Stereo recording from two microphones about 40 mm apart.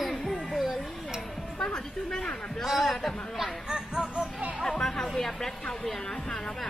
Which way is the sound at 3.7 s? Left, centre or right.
Centre.